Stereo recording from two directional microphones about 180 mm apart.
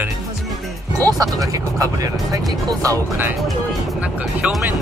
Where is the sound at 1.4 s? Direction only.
20° right (ahead or behind).